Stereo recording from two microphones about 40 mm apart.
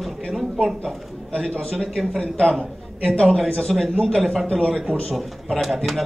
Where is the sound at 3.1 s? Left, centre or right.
Centre.